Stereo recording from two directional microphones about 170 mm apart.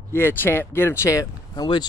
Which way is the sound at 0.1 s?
15° left (ahead or behind).